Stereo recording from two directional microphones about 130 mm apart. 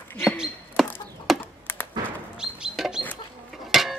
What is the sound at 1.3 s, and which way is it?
Computer keyboard, centre (ahead or behind).